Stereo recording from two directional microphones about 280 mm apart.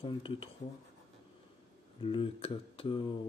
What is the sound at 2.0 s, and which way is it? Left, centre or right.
Speech, centre.